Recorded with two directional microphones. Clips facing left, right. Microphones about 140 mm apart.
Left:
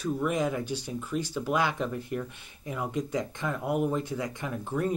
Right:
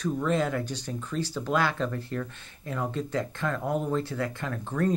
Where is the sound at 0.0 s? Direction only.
15° left (ahead or behind).